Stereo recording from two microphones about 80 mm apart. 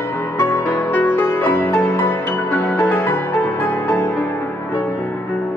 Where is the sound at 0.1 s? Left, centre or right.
Left.